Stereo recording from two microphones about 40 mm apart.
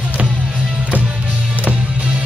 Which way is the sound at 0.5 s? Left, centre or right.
Centre.